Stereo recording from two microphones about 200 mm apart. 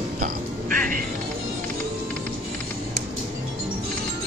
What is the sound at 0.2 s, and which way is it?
Music, 45° right (ahead or behind).